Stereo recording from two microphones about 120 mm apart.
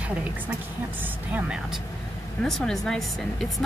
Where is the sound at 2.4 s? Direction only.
5° left (ahead or behind).